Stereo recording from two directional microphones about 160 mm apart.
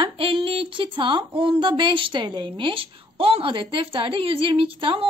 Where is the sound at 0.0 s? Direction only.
35° right (ahead or behind).